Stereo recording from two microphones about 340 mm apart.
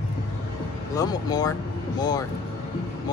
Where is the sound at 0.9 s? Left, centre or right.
Centre.